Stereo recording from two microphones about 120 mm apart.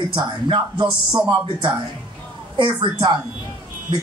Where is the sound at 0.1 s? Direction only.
45° right (ahead or behind).